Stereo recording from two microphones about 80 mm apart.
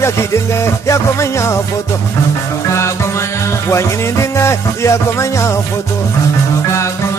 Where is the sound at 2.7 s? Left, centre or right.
Left.